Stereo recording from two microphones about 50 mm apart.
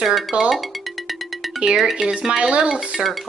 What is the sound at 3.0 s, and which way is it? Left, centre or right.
Speech, centre.